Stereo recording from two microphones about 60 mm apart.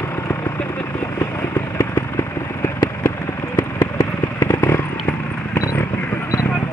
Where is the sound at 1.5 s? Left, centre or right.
Left.